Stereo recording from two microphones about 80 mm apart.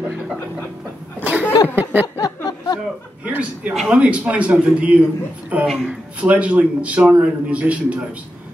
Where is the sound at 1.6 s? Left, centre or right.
Right.